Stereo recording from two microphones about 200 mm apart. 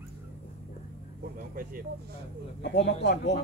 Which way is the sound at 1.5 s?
45° right (ahead or behind).